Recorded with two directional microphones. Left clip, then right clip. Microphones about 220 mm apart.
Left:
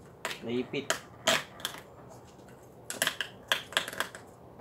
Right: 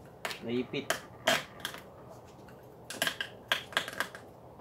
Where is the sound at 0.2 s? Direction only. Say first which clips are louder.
Left 1 dB; centre (ahead or behind).